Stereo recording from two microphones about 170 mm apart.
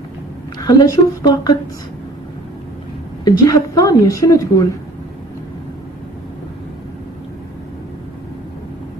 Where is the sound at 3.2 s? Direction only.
20° left (ahead or behind).